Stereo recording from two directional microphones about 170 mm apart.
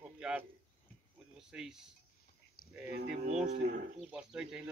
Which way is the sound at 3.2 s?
45° right (ahead or behind).